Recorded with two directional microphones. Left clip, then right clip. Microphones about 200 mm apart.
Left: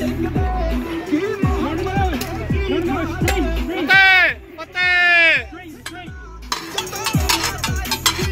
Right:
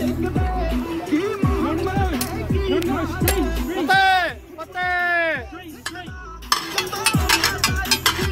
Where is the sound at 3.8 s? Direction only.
35° right (ahead or behind).